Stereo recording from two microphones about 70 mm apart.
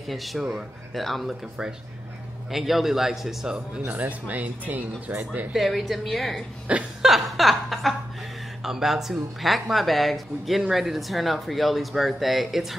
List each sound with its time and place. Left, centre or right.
0.0 s speech: centre
2.5 s speech: centre
3.8 s speech: right
5.5 s speech: centre
7.0 s chuckle: centre
8.6 s speech: centre